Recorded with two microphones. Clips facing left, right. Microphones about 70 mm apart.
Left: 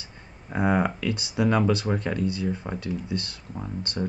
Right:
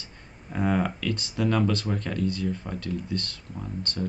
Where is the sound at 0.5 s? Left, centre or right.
Centre.